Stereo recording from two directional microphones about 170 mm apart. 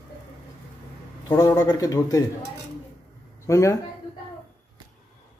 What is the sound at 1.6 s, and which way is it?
Speech, 20° left (ahead or behind).